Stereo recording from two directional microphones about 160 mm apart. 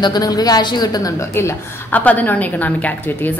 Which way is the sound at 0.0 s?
25° left (ahead or behind).